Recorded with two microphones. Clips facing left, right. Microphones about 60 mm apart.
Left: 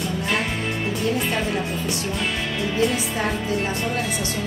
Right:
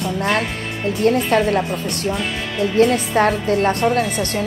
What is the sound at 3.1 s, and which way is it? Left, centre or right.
Speech, right.